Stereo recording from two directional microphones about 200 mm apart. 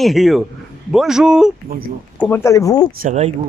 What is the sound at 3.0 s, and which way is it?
Speech, 35° right (ahead or behind).